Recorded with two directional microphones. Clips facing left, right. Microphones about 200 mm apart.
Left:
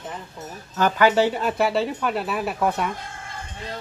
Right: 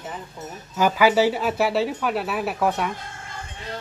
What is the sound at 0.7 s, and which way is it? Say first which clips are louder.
Speech: even; 10° right (ahead or behind).